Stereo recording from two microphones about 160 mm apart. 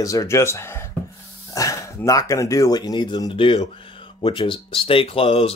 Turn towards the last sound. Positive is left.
turn(degrees=35)  # may be behind; listen again after turning